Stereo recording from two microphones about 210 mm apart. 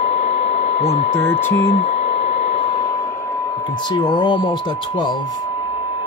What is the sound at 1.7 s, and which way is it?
Speech, 25° left (ahead or behind).